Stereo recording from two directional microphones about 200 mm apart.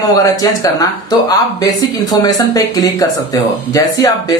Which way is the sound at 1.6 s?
20° left (ahead or behind).